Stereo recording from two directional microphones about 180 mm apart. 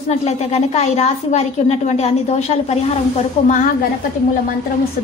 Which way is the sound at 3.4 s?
40° left (ahead or behind).